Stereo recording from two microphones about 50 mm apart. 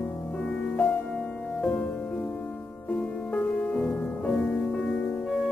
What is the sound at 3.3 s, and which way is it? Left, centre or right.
Music, left.